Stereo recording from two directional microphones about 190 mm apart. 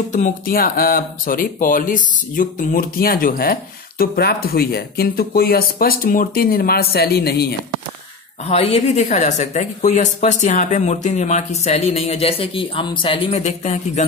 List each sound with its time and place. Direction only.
0.1 s speech: 45° left (ahead or behind)
8.5 s speech: 35° left (ahead or behind)